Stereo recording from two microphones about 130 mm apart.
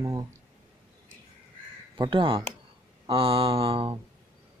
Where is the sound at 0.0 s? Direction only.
25° right (ahead or behind).